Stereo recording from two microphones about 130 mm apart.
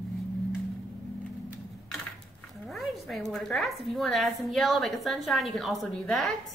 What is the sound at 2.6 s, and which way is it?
A woman's voice, centre (ahead or behind).